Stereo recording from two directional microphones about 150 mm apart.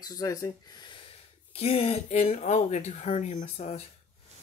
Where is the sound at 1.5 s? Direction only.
40° left (ahead or behind).